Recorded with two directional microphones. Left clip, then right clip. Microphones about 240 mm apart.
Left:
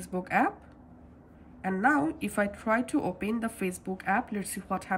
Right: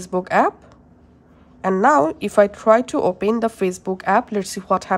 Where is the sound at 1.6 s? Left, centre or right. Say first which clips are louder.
Right 11 dB; centre.